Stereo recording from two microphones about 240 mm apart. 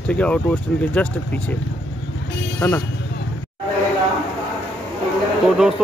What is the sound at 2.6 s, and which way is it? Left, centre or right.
Speech, centre.